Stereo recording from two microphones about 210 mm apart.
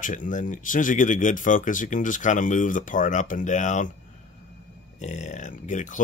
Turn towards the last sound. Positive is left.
turn(degrees=35)  # may be behind; listen again after turning